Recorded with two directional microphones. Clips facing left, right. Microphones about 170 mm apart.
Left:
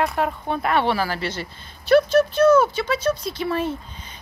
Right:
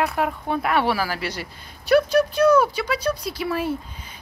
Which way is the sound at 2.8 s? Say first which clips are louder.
Left 2 dB; 25° left (ahead or behind).